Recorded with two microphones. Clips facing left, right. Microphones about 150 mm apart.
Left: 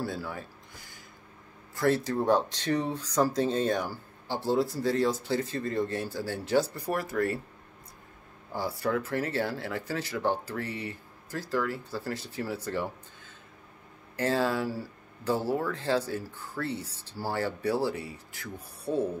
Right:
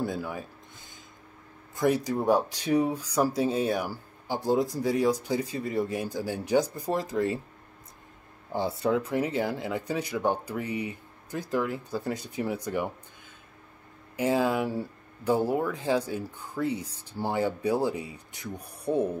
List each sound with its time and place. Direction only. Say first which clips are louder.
0.0 s speech: right 3 dB; 15° right (ahead or behind)
8.5 s speech: right 3 dB; 20° right (ahead or behind)
14.1 s speech: right 2 dB; 10° right (ahead or behind)